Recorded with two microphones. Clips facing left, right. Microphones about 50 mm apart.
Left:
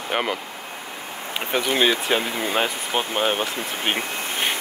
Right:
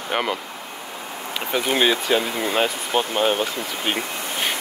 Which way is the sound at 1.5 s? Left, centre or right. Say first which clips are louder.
Even; left.